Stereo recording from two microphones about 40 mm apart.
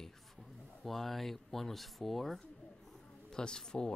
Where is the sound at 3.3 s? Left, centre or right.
Centre.